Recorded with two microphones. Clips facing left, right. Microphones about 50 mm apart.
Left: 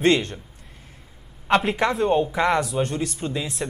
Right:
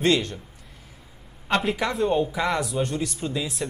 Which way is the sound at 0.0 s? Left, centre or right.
Left.